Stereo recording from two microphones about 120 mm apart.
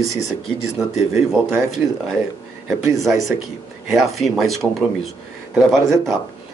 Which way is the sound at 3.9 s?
Centre (ahead or behind).